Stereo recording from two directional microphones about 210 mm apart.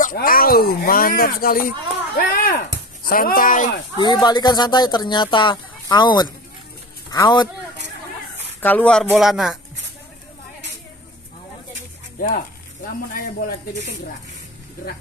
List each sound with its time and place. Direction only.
0.0 s speech: 45° left (ahead or behind)
4.0 s speech: 20° left (ahead or behind)
8.5 s speech: 10° left (ahead or behind)